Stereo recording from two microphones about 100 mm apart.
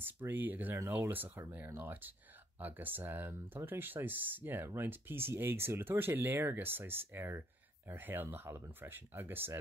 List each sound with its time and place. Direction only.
0.0 s speech: 20° right (ahead or behind)